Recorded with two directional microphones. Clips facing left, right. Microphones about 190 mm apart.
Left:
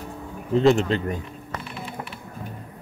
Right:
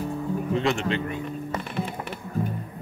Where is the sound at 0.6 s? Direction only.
35° left (ahead or behind).